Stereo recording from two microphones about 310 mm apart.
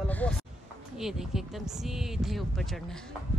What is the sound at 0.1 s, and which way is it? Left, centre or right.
Speech, centre.